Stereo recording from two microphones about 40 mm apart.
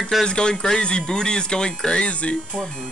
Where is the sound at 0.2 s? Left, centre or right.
Left.